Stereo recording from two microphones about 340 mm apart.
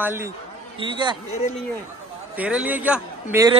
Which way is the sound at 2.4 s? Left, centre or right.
Centre.